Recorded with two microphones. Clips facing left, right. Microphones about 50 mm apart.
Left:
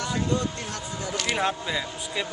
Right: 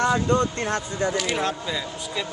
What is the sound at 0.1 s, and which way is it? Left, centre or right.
Speech, right.